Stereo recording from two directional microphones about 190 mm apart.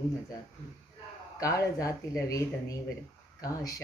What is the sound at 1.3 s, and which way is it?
Speech, 15° left (ahead or behind).